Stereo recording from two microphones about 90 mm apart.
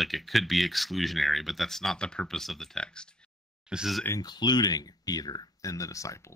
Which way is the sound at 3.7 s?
5° right (ahead or behind).